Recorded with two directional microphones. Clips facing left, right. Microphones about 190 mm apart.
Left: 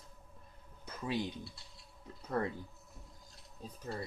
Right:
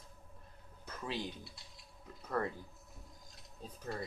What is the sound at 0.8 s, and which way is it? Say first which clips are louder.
Music: left 4 dB; 15° left (ahead or behind).